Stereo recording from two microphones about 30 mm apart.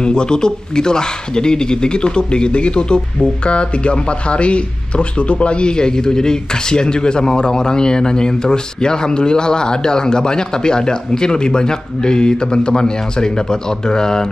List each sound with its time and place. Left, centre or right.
0.0 s speech: left